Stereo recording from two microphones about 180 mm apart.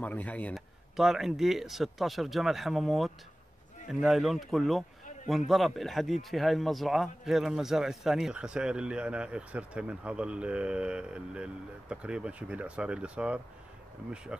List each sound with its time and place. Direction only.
0.0 s a man's voice: 10° left (ahead or behind)